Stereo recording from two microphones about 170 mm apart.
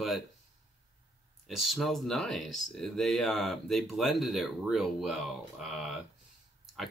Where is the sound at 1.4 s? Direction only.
Centre (ahead or behind).